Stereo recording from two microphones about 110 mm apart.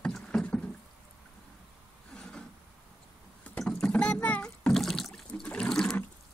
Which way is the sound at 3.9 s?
10° left (ahead or behind).